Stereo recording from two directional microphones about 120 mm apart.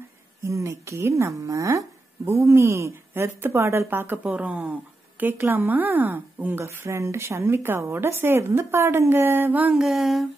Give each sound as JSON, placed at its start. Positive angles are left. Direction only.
{"t": 0.4, "sound": "a woman's voice", "side_deg": -25}